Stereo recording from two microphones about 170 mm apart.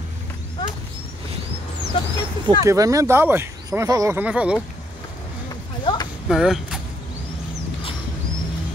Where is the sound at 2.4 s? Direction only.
20° right (ahead or behind).